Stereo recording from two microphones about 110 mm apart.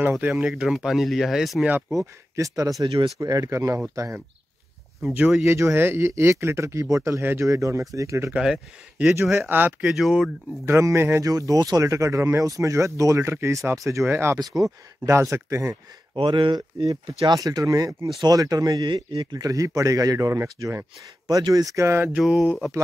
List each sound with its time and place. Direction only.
0.1 s speech: 5° right (ahead or behind)
2.0 s speech: 30° right (ahead or behind)
5.1 s speech: 10° right (ahead or behind)
5.4 s speech: 25° right (ahead or behind)
8.3 s speech: 10° right (ahead or behind)
9.8 s speech: 5° right (ahead or behind)
10.6 s speech: 25° right (ahead or behind)
16.3 s speech: 45° right (ahead or behind)
19.3 s speech: 30° right (ahead or behind)
21.3 s speech: 35° right (ahead or behind); by 22.1 s 20° right (ahead or behind)
22.1 s speech: centre (ahead or behind)